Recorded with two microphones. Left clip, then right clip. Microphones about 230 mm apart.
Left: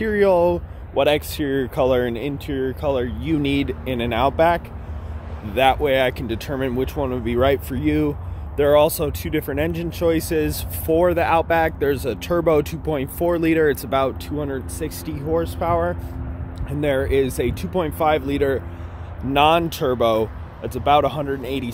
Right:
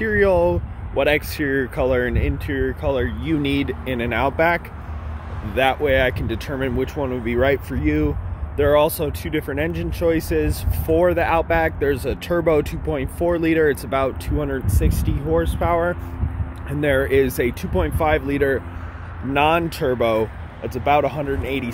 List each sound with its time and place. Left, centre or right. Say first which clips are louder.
0.0 s speech: even; centre